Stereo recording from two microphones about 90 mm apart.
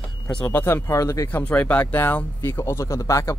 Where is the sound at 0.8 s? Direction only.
35° left (ahead or behind).